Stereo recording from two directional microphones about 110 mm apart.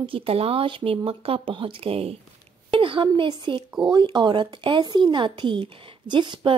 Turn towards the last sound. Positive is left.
turn(degrees=-45)  # may be behind; listen again after turning